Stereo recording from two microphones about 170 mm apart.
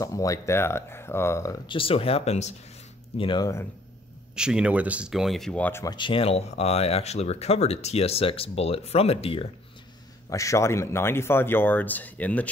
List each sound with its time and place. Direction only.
0.0 s speech: 20° left (ahead or behind)
1.8 s speech: 35° left (ahead or behind)
3.2 s speech: 25° left (ahead or behind)
4.4 s speech: 5° right (ahead or behind); by 5.9 s 15° left (ahead or behind)
5.9 s speech: 30° left (ahead or behind)
10.3 s speech: 20° left (ahead or behind)